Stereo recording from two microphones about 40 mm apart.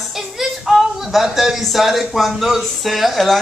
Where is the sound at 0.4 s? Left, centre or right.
Centre.